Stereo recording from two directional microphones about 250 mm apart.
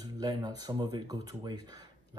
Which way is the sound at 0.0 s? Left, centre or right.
Centre.